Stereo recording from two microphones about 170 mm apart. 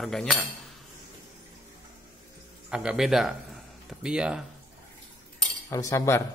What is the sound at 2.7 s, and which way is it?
Speech, 5° right (ahead or behind).